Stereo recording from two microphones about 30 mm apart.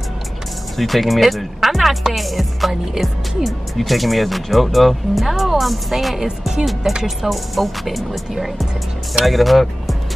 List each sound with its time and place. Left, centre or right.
0.7 s speech: centre
6.2 s speech: right
7.2 s speech: centre
9.2 s speech: centre